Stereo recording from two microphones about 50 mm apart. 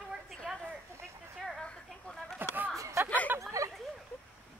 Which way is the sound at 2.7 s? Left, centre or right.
Right.